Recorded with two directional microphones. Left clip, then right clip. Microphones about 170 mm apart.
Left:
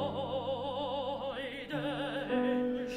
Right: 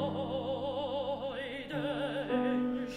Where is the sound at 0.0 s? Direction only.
50° left (ahead or behind).